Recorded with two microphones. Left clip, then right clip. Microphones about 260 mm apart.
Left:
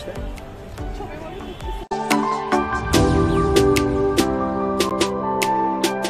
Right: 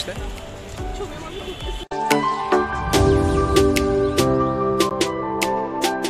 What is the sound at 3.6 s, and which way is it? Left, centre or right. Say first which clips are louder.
Music: even; centre.